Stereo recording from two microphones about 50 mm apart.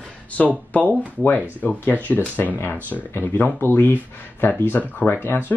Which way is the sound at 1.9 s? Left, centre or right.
Left.